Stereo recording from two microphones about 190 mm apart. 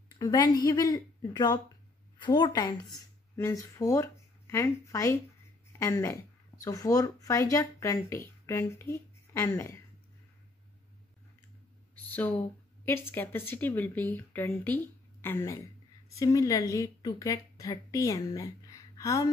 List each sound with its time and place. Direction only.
0.2 s speech: 20° left (ahead or behind)
12.1 s speech: 10° left (ahead or behind)